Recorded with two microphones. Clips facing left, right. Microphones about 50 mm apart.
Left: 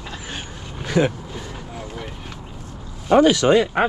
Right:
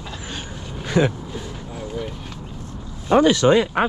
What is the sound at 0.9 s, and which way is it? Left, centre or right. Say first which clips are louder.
Speech: even; right.